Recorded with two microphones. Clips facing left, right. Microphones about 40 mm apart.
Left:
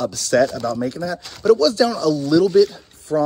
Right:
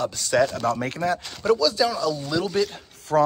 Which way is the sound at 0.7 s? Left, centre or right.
Right.